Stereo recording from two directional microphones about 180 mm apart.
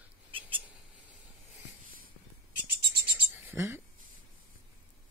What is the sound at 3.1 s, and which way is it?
Bird, 15° right (ahead or behind).